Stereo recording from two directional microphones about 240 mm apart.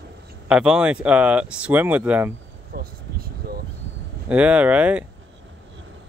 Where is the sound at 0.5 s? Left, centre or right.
Centre.